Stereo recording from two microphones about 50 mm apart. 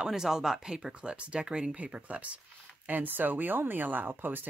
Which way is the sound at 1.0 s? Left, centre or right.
Right.